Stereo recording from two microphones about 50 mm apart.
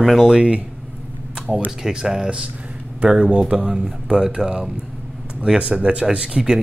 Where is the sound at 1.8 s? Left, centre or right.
Centre.